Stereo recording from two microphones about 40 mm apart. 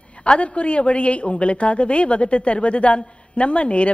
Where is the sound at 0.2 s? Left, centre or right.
Left.